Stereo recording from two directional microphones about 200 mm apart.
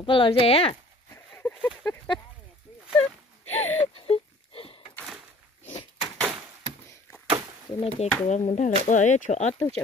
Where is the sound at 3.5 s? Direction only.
90° left.